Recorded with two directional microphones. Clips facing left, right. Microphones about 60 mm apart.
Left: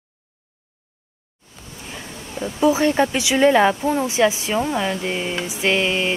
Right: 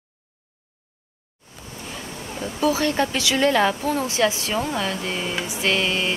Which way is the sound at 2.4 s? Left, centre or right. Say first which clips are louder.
Left 4 dB; left.